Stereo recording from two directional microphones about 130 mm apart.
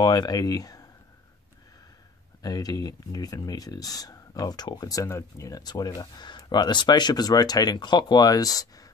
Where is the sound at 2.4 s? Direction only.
30° left (ahead or behind).